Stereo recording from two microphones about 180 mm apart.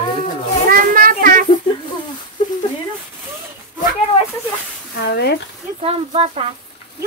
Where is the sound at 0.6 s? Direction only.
50° right (ahead or behind).